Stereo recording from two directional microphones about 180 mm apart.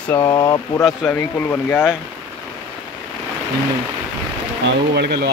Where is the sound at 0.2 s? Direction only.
25° left (ahead or behind).